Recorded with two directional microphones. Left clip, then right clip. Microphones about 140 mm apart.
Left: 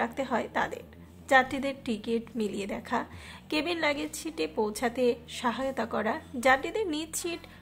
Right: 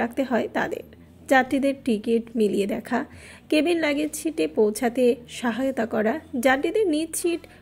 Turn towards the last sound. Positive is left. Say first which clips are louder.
# right 9 dB
turn(degrees=-15)  # may be behind; listen again after turning